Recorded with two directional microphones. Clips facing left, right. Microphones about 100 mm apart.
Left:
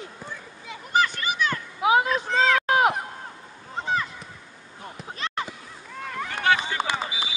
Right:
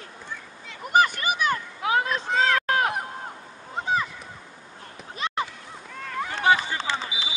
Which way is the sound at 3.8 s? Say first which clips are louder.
Right 1 dB; 10° right (ahead or behind).